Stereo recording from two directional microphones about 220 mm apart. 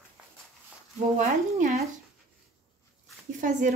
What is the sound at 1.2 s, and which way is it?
Speech, 35° right (ahead or behind).